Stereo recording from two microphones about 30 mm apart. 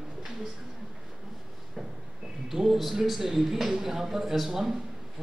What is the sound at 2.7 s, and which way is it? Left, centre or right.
A man's voice, centre.